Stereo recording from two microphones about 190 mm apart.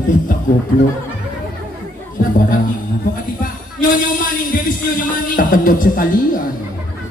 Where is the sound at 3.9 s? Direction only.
45° left (ahead or behind).